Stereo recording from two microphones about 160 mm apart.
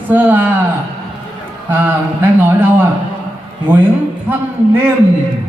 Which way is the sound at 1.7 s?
10° right (ahead or behind).